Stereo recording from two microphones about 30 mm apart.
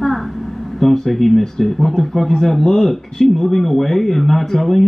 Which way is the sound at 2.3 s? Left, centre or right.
Centre.